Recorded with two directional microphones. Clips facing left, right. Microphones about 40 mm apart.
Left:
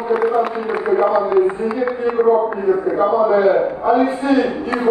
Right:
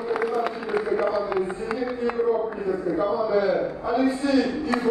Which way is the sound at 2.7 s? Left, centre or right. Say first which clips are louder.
Left 8 dB; left.